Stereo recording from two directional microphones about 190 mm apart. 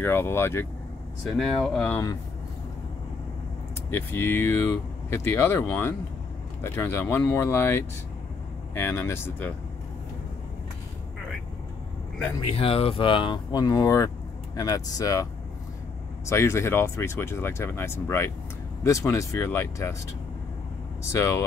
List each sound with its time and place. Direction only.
0.0 s speech: 10° left (ahead or behind)
1.4 s speech: centre (ahead or behind)
3.9 s speech: 10° left (ahead or behind)
12.5 s speech: 30° left (ahead or behind)
16.3 s speech: 15° left (ahead or behind)
21.1 s speech: 15° left (ahead or behind)